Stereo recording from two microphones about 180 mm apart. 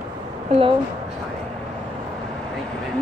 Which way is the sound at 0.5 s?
35° right (ahead or behind).